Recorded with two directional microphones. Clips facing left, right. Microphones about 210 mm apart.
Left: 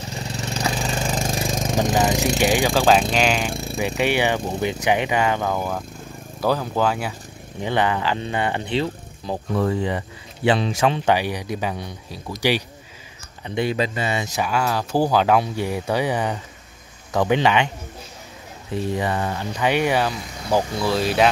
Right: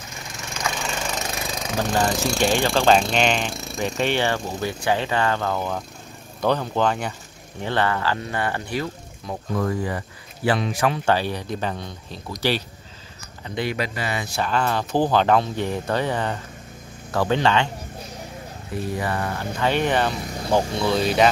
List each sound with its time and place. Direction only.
0.1 s a sound: 35° left (ahead or behind)
1.9 s speech: 5° left (ahead or behind)
2.2 s speech: 15° left (ahead or behind)
2.7 s speech: 5° left (ahead or behind)
7.6 s speech: 15° left (ahead or behind)
14.4 s speech: 10° left (ahead or behind)
18.9 s speech: 15° left (ahead or behind)